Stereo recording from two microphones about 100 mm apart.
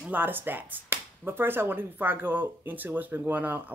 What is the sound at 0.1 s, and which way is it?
Speech, 20° right (ahead or behind).